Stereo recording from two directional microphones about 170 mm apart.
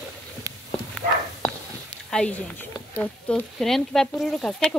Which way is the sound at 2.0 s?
5° left (ahead or behind).